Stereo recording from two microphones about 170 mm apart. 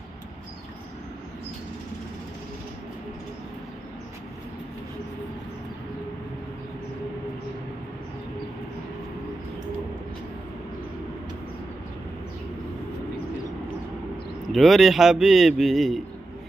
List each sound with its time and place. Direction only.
14.5 s a man's voice: centre (ahead or behind)